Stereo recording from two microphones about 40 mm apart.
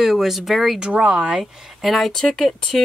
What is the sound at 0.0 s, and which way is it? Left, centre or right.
Speech, centre.